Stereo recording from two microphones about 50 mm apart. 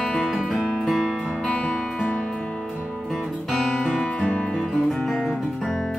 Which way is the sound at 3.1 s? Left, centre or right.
Centre.